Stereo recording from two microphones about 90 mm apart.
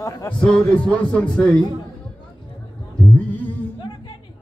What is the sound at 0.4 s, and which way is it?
Speech, 10° left (ahead or behind).